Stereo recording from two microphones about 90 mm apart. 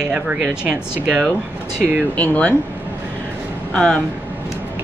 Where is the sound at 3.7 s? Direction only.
10° left (ahead or behind).